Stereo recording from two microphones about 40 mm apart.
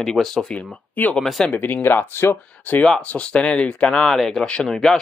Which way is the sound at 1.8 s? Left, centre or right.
Left.